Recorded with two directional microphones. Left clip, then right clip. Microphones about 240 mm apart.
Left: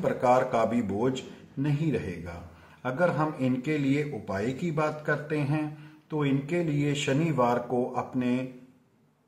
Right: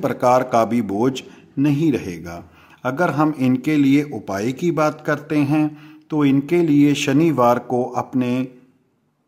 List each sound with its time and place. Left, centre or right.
0.0 s speech: right